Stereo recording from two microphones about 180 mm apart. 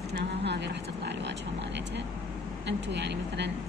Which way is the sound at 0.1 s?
70° right (ahead or behind).